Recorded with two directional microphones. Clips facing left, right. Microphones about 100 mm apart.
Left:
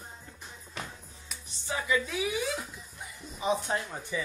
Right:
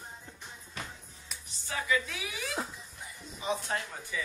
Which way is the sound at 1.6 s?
25° left (ahead or behind).